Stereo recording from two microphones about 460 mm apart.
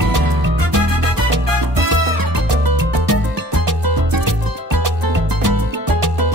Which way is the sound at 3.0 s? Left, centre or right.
Right.